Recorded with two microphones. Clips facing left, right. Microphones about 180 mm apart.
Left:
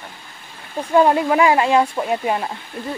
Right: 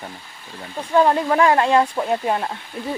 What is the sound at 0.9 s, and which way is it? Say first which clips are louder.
Speech: left 2 dB; 10° left (ahead or behind).